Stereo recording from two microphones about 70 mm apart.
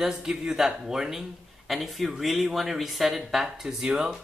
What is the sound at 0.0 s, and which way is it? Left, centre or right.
Speech, centre.